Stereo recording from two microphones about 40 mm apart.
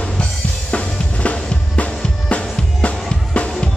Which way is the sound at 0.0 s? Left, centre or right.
Left.